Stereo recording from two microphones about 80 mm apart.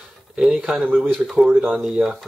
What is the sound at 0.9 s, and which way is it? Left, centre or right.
Speech, centre.